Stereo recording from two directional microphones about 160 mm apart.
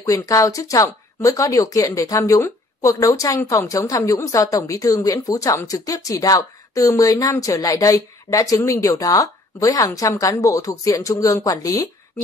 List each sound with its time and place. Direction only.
0.0 s speech: 20° left (ahead or behind)